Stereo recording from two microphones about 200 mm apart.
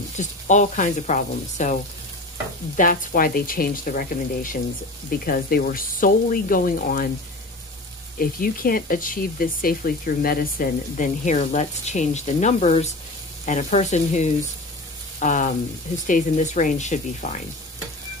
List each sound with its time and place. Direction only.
0.2 s speech: 35° left (ahead or behind)
2.8 s speech: 45° left (ahead or behind)
8.2 s speech: 45° left (ahead or behind)